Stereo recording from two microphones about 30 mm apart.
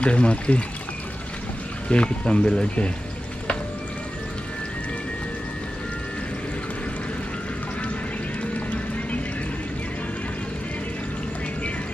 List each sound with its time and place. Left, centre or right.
0.0 s speech: left
1.9 s speech: left